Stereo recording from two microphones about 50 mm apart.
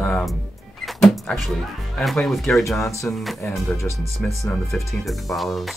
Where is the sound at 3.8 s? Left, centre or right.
Left.